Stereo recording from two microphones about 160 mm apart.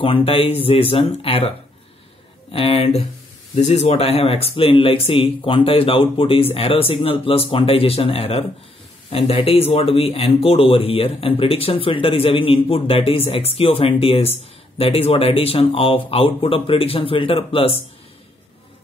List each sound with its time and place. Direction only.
0.0 s speech: 35° left (ahead or behind)
2.5 s speech: 35° left (ahead or behind)